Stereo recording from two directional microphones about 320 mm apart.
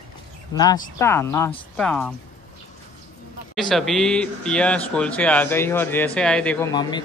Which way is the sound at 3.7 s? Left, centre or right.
Centre.